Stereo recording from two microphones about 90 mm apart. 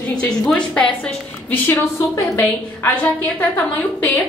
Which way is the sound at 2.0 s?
35° left (ahead or behind).